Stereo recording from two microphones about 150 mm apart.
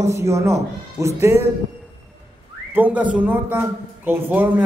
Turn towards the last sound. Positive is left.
turn(degrees=-10)  # may be behind; listen again after turning